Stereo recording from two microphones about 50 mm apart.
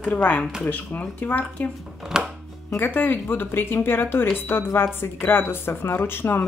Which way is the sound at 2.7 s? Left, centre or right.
Left.